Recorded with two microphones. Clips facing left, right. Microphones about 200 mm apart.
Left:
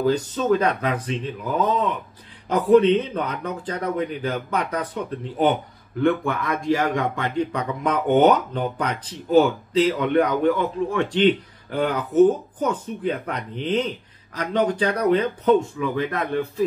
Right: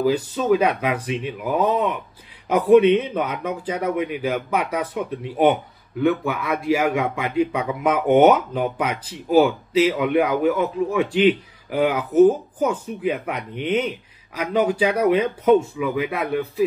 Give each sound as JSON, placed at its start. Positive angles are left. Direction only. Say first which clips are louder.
{"t": 0.0, "sound": "speech", "louder": "right 1 dB", "side_deg": -5}